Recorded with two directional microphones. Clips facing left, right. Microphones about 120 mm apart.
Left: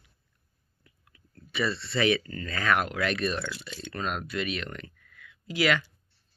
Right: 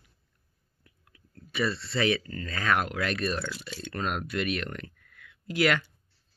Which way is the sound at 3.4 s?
5° right (ahead or behind).